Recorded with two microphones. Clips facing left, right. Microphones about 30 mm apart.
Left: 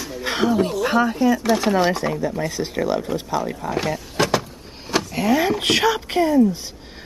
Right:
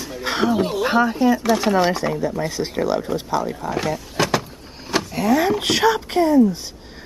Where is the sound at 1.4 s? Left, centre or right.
Centre.